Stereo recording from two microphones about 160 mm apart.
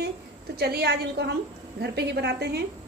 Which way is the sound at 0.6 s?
85° right.